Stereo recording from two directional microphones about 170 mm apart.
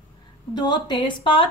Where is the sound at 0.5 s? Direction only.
25° left (ahead or behind).